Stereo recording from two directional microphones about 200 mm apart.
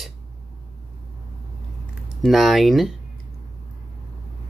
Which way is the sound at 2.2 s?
Centre (ahead or behind).